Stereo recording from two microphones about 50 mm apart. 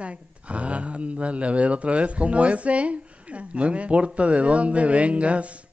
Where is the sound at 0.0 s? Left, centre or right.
Right.